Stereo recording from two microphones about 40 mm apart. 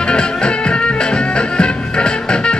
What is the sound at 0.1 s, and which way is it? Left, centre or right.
Music, left.